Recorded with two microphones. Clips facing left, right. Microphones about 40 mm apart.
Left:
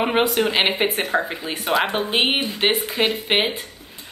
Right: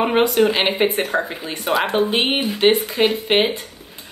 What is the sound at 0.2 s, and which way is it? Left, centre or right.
A woman's voice, centre.